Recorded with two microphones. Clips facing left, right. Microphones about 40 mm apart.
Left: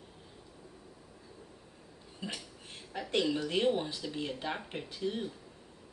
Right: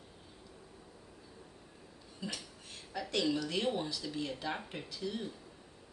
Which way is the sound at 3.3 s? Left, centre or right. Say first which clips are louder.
Left 4 dB; left.